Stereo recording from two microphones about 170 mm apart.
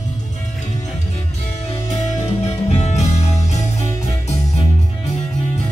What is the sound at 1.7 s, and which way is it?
Music, 40° left (ahead or behind).